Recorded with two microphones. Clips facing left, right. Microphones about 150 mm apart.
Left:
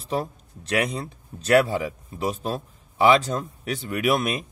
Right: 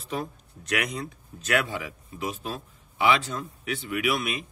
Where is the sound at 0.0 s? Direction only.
35° left (ahead or behind).